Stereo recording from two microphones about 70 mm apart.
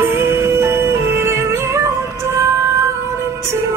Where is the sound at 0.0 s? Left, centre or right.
Right.